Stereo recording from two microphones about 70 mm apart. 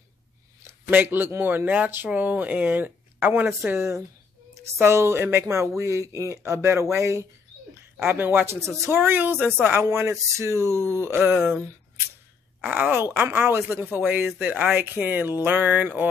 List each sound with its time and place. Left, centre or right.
0.8 s speech: right
8.0 s speech: right
12.9 s speech: right